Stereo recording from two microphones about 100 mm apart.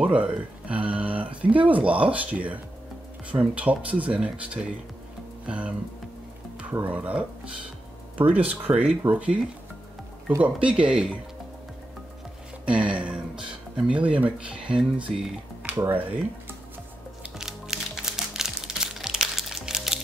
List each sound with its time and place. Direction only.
0.0 s speech: 15° right (ahead or behind)
8.5 s speech: 15° right (ahead or behind)
12.6 s speech: 10° right (ahead or behind)
17.2 s music: 5° right (ahead or behind)